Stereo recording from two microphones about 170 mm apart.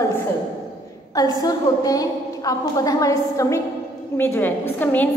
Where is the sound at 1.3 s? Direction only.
20° left (ahead or behind).